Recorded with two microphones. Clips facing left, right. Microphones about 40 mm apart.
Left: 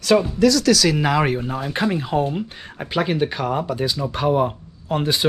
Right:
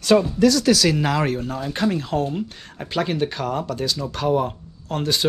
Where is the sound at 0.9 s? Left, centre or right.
Centre.